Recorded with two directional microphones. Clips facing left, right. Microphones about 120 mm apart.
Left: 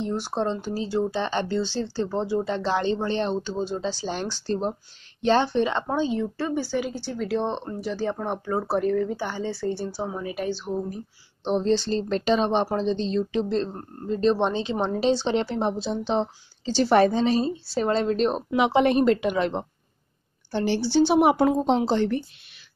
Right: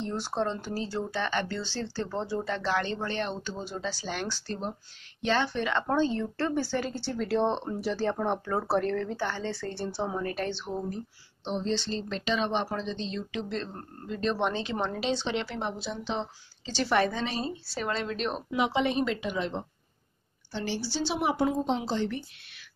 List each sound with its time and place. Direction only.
0.0 s speech: 15° left (ahead or behind)
5.9 s speech: 10° left (ahead or behind)
11.4 s a woman's voice: 45° left (ahead or behind); by 15.0 s 25° left (ahead or behind)
15.0 s a woman's voice: 35° left (ahead or behind)
18.6 s speech: 55° left (ahead or behind)